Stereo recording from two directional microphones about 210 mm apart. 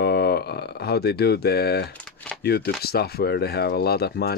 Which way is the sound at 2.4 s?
50° left (ahead or behind).